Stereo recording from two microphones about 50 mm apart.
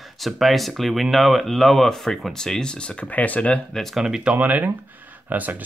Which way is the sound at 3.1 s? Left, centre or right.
Left.